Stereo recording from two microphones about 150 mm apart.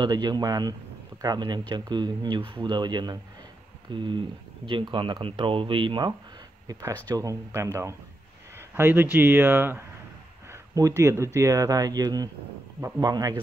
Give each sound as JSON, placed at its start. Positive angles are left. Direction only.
{"t": 0.0, "sound": "speech", "side_deg": -30}